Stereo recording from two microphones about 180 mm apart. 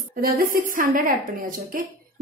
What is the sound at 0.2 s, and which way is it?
Speech, 50° right (ahead or behind).